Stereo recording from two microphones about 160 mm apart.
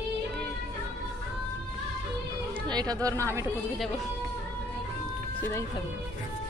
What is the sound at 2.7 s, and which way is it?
Speech, 25° right (ahead or behind).